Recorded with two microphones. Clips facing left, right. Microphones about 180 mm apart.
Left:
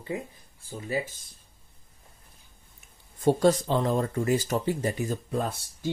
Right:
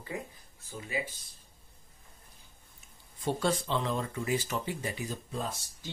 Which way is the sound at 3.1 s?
45° left (ahead or behind).